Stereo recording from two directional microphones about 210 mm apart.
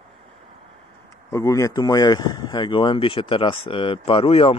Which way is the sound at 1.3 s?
15° left (ahead or behind).